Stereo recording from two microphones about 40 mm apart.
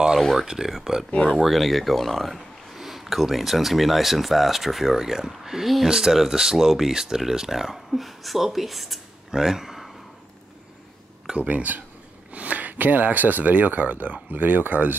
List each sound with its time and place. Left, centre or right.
0.4 s speech: centre
1.4 s speech: centre
9.3 s speech: centre
11.3 s speech: right